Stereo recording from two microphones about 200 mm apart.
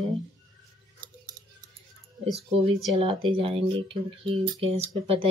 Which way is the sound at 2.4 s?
30° right (ahead or behind).